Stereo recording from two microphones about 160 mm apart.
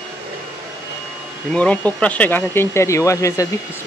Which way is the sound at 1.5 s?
10° left (ahead or behind).